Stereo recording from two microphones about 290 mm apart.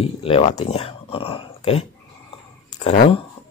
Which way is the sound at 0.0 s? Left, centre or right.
Centre.